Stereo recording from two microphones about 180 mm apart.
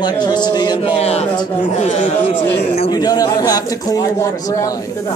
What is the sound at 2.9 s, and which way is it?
A man's voice, 20° left (ahead or behind).